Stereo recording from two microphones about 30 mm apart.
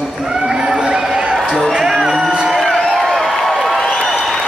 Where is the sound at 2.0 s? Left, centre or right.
Centre.